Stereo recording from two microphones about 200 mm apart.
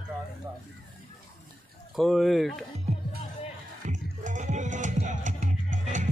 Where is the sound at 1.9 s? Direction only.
Centre (ahead or behind).